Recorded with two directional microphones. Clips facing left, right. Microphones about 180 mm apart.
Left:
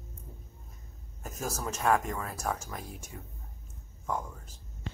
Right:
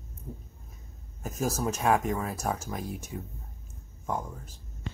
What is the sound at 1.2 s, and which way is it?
Speech, 5° right (ahead or behind).